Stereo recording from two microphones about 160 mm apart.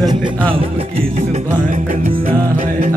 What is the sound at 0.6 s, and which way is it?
Music, 40° right (ahead or behind).